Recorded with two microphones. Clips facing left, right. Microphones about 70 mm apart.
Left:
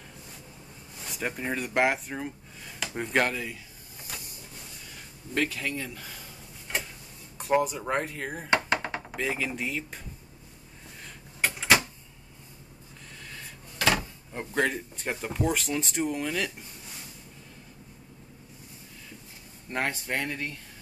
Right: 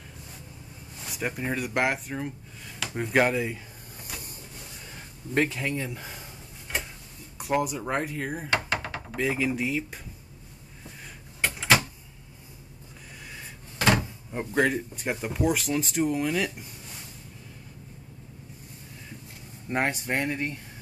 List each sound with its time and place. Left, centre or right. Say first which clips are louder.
1.0 s speech: right 1 dB; centre
5.3 s speech: right 3 dB; right
7.3 s speech: left 1 dB; centre
11.4 s a sound: even; centre
13.7 s drawer open or close: right 2 dB; right
14.3 s speech: right 3 dB; centre
19.7 s speech: right 3 dB; centre